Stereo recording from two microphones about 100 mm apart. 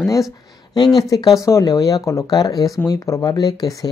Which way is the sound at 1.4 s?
35° left (ahead or behind).